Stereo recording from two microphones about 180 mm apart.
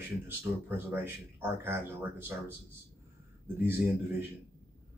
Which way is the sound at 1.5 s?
15° right (ahead or behind).